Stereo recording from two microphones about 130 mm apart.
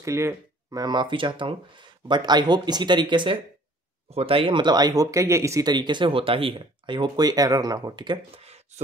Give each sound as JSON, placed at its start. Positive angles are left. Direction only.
{"t": 0.0, "sound": "speech", "side_deg": -20}
{"t": 4.1, "sound": "speech", "side_deg": -50}
{"t": 8.4, "sound": "a sound", "side_deg": -55}